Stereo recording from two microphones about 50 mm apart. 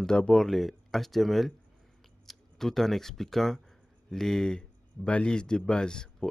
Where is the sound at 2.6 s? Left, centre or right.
Centre.